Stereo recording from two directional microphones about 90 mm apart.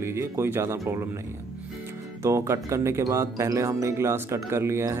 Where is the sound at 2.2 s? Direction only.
35° right (ahead or behind).